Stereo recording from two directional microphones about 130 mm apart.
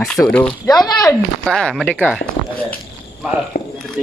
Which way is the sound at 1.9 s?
10° right (ahead or behind).